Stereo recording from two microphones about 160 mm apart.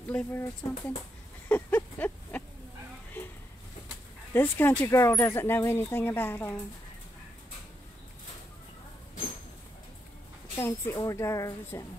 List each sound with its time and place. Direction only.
0.1 s speech: 15° left (ahead or behind)
1.5 s a sound: 10° left (ahead or behind)
4.3 s speech: 15° left (ahead or behind)
10.6 s a woman's voice: 20° left (ahead or behind)